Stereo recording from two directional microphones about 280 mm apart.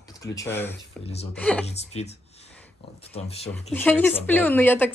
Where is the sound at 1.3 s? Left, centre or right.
Centre.